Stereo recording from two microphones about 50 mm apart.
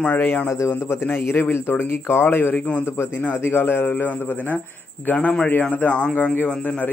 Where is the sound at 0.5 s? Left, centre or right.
Left.